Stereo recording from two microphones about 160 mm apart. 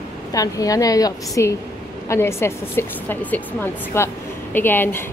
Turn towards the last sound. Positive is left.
turn(degrees=15)  # may be behind; listen again after turning